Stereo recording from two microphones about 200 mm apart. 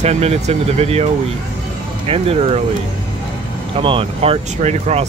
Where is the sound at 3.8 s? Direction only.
25° right (ahead or behind).